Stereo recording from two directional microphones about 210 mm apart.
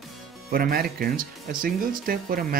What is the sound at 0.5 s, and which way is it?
Speech, 45° right (ahead or behind).